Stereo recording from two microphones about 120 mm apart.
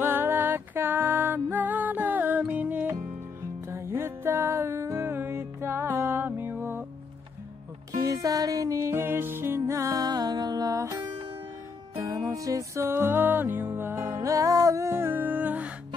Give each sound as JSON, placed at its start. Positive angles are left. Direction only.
{"t": 0.0, "sound": "music", "side_deg": -15}
{"t": 7.9, "sound": "music", "side_deg": -30}
{"t": 12.3, "sound": "music", "side_deg": -30}